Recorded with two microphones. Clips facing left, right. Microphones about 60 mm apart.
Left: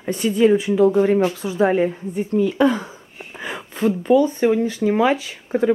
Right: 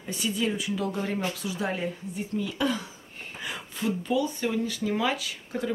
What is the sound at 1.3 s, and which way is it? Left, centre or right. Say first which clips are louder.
Speech: left 13 dB; left.